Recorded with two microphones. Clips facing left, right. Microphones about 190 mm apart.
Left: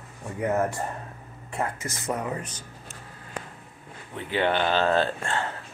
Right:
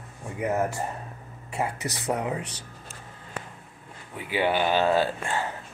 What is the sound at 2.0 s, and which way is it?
Speech, 15° right (ahead or behind).